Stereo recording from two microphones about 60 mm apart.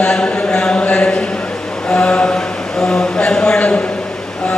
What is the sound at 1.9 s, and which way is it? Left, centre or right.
Mantra, centre.